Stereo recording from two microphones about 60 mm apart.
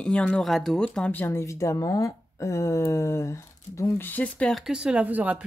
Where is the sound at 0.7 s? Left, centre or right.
Centre.